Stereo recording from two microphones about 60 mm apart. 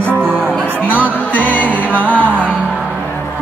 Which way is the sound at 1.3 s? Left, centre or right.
Left.